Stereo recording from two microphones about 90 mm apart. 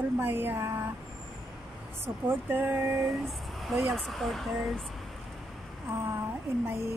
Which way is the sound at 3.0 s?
Centre (ahead or behind).